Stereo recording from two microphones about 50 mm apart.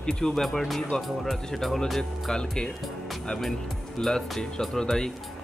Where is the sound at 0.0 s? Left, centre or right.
Centre.